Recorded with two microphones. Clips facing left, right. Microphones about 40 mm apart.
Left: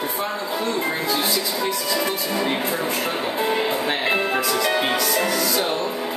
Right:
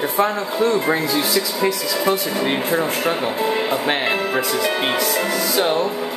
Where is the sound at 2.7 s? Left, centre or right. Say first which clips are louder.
Right 4 dB; right.